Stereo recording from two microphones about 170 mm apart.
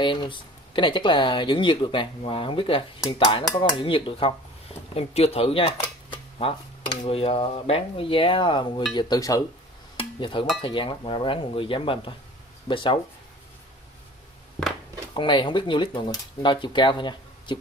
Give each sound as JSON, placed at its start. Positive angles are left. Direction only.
{"t": 0.0, "sound": "speech", "side_deg": 30}
{"t": 9.9, "sound": "a sound", "side_deg": 30}
{"t": 10.6, "sound": "speech", "side_deg": 30}
{"t": 15.1, "sound": "speech", "side_deg": 30}